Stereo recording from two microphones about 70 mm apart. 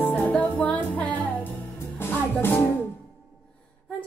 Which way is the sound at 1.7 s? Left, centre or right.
Left.